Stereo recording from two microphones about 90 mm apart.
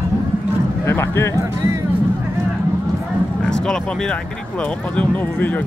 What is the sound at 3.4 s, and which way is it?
Speech, 5° left (ahead or behind).